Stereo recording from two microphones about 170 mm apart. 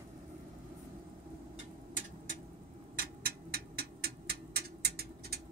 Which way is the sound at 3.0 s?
65° right (ahead or behind).